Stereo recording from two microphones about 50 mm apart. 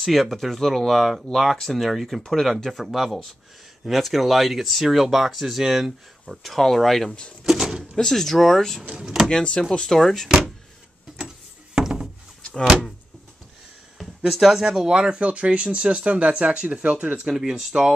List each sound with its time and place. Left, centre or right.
0.0 s speech: centre
6.4 s speech: centre
7.9 s speech: centre
11.1 s a sound: centre
13.9 s speech: centre; by 17.3 s right
17.3 s speech: centre